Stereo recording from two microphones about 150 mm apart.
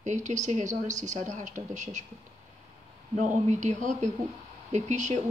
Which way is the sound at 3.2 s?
55° right (ahead or behind).